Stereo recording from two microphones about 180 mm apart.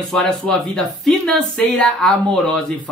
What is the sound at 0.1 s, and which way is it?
Speech, 5° left (ahead or behind).